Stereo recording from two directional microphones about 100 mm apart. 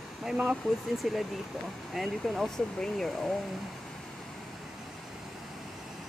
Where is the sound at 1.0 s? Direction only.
Centre (ahead or behind).